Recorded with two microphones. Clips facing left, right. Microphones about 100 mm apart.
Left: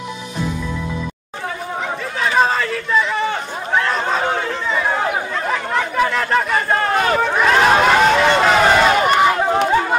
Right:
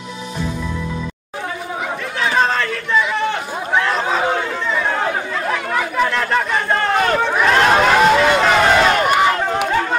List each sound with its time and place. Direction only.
2.1 s chatter: 5° left (ahead or behind)